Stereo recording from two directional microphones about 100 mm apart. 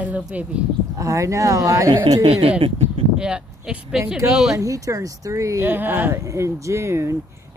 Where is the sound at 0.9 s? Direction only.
30° right (ahead or behind).